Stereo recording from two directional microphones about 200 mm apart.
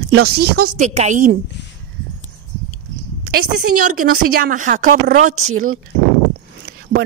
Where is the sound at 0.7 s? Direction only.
35° right (ahead or behind).